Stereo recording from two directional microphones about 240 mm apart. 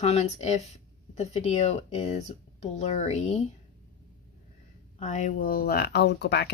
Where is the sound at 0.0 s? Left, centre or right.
Left.